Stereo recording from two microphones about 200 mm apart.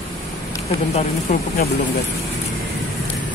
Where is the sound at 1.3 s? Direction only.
40° left (ahead or behind).